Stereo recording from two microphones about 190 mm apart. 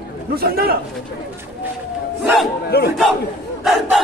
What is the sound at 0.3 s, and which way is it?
Speech, 55° right (ahead or behind).